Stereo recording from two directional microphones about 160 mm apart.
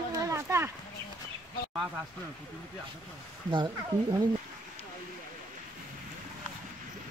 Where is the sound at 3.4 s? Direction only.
25° right (ahead or behind).